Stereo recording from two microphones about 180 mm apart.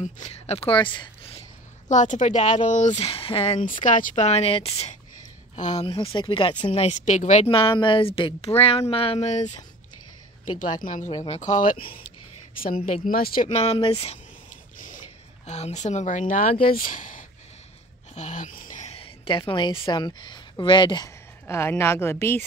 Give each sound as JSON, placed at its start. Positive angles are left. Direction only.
{"t": 0.0, "sound": "speech", "side_deg": 40}
{"t": 1.9, "sound": "speech", "side_deg": 45}
{"t": 10.8, "sound": "speech", "side_deg": 40}
{"t": 11.8, "sound": "speech", "side_deg": 30}
{"t": 12.9, "sound": "speech", "side_deg": 50}
{"t": 13.5, "sound": "speech", "side_deg": 35}
{"t": 15.4, "sound": "a woman's voice", "side_deg": 40}